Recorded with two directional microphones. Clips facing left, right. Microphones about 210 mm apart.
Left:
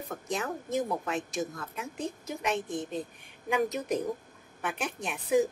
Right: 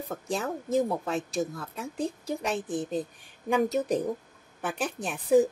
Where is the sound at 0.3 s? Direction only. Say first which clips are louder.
Right 4 dB; 30° right (ahead or behind).